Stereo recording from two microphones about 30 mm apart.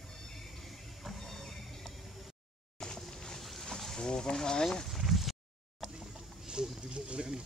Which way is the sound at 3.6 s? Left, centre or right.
Centre.